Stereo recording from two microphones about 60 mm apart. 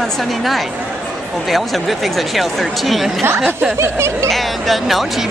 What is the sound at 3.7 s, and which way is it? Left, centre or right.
Speech, right.